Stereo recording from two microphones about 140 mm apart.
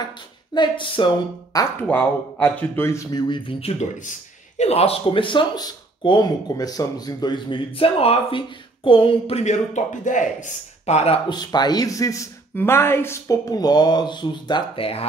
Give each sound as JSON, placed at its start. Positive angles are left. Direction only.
{"t": 0.6, "sound": "speech", "side_deg": 35}
{"t": 1.9, "sound": "speech", "side_deg": 10}
{"t": 4.0, "sound": "speech", "side_deg": 60}
{"t": 9.4, "sound": "a man's voice", "side_deg": 60}
{"t": 11.2, "sound": "speech", "side_deg": 30}